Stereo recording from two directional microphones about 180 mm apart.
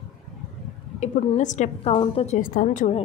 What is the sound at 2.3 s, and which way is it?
Speech, 50° left (ahead or behind).